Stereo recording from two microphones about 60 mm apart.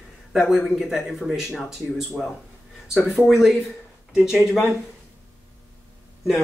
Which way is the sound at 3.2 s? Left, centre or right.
Centre.